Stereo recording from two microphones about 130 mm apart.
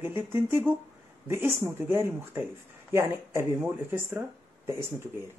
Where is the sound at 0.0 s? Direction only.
15° right (ahead or behind).